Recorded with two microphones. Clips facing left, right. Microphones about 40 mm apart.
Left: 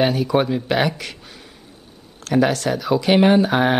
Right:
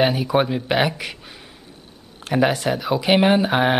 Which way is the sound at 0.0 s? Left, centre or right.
Centre.